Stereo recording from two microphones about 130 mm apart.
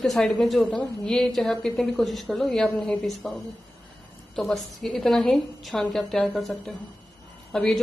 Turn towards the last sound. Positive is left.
turn(degrees=5)  # may be behind; listen again after turning